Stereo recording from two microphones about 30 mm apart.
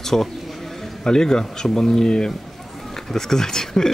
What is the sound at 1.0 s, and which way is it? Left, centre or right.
Speech, left.